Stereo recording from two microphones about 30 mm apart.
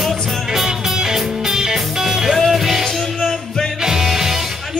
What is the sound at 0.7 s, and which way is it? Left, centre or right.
Music, right.